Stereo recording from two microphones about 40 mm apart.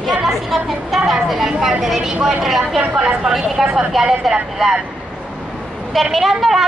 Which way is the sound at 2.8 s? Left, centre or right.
Right.